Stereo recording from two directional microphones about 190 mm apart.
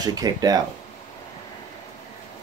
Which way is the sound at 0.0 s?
20° right (ahead or behind).